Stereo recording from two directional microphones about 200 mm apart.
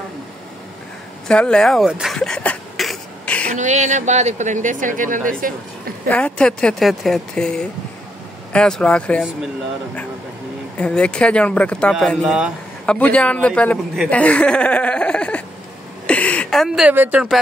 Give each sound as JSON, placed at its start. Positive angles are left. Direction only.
{"t": 1.2, "sound": "beatboxing", "side_deg": 5}
{"t": 3.5, "sound": "speech", "side_deg": -35}
{"t": 6.0, "sound": "a man's voice", "side_deg": 5}
{"t": 10.8, "sound": "a man's voice", "side_deg": 5}